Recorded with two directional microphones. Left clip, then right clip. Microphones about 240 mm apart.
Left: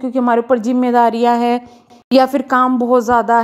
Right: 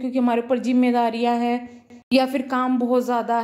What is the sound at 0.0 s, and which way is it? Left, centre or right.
Speech, left.